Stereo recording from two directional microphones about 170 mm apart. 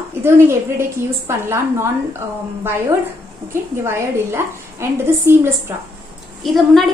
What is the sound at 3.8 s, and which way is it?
A woman's voice, 15° right (ahead or behind).